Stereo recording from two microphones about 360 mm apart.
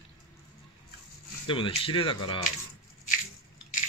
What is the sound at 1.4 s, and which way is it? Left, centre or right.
Speech, centre.